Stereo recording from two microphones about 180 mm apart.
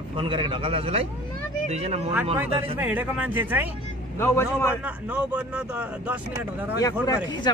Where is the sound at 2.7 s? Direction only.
10° right (ahead or behind).